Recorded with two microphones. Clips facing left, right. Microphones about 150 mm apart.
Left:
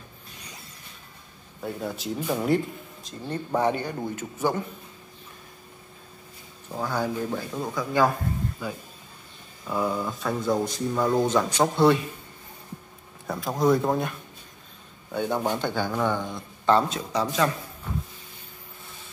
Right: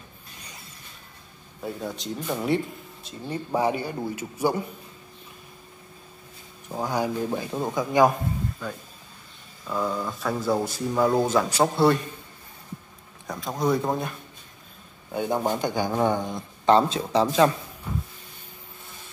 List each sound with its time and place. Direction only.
1.6 s speech: centre (ahead or behind)
3.1 s a man's voice: 10° right (ahead or behind)
6.7 s a man's voice: 15° right (ahead or behind)
8.6 s speech: 5° left (ahead or behind)
13.3 s speech: centre (ahead or behind)
15.0 s a man's voice: 10° right (ahead or behind); by 17.5 s 30° right (ahead or behind)